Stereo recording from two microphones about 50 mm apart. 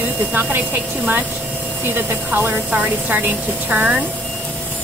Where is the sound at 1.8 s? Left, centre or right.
Right.